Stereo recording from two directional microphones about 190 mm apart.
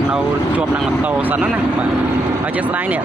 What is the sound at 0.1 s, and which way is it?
Speech, 5° right (ahead or behind).